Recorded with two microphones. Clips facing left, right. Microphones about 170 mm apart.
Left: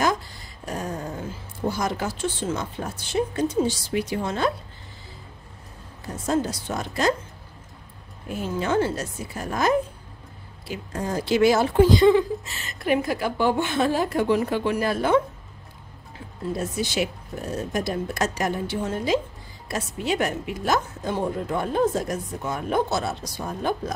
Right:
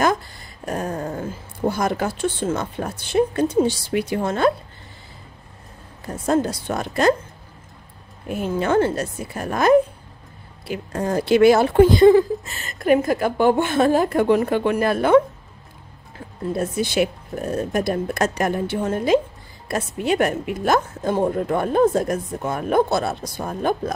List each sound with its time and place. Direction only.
0.7 s a sound: 55° right (ahead or behind)
1.7 s a woman's voice: 55° right (ahead or behind)
6.2 s a woman's voice: 55° right (ahead or behind)
8.3 s a woman's voice: 60° right (ahead or behind)
16.5 s a woman's voice: 55° right (ahead or behind)